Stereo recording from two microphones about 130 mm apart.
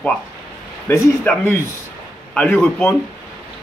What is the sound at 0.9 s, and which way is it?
Speech, 15° left (ahead or behind).